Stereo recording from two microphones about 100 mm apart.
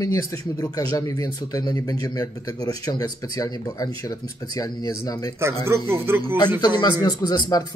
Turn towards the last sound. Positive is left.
turn(degrees=45)  # may be behind; listen again after turning